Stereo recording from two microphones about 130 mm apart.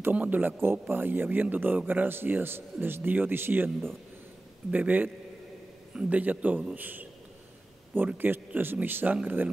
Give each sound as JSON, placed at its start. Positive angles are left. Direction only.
{"t": 0.0, "sound": "a man's voice", "side_deg": -15}